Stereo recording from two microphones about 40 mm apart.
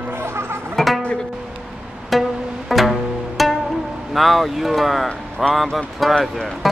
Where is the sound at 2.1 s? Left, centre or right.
Centre.